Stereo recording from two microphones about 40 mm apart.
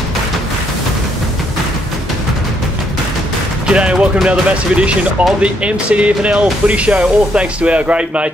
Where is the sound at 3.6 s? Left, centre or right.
Right.